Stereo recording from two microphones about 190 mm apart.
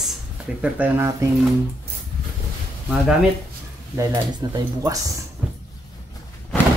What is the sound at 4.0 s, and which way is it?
Speech, 20° right (ahead or behind).